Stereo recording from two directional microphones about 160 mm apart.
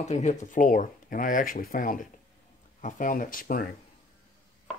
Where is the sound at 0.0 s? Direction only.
45° left (ahead or behind).